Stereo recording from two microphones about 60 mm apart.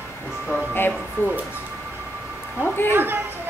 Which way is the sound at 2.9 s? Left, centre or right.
Right.